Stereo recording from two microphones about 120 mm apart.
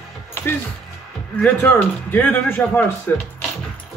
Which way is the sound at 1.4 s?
10° left (ahead or behind).